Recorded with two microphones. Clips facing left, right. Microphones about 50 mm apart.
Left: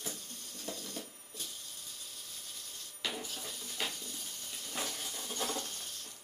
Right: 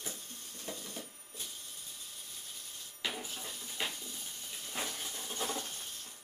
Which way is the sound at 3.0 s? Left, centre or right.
Centre.